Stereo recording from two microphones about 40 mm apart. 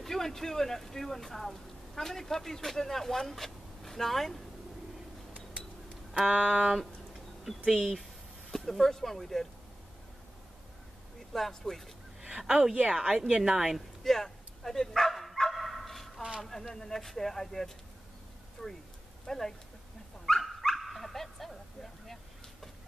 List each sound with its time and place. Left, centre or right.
0.0 s speech: centre
6.2 s a sound: right
7.4 s speech: centre
8.5 s speech: centre
11.3 s speech: centre
12.2 s speech: centre
13.2 s a woman's voice: centre
14.0 s bow-wow: centre
16.4 s speech: centre
20.2 s dog: centre
22.0 s a sound: centre